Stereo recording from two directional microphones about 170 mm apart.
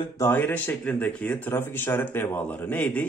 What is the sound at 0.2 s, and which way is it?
A man's voice, 10° left (ahead or behind).